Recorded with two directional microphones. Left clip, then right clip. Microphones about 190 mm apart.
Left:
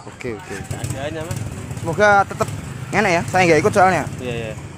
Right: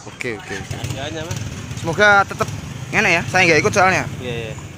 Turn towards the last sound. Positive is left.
turn(degrees=40)  # may be behind; listen again after turning